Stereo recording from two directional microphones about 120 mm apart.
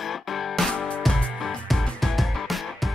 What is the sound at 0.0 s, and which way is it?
Music, centre (ahead or behind).